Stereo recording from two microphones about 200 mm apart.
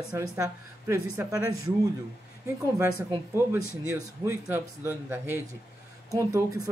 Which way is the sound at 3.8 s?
10° right (ahead or behind).